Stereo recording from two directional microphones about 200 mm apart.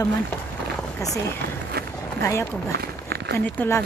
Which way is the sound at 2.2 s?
15° left (ahead or behind).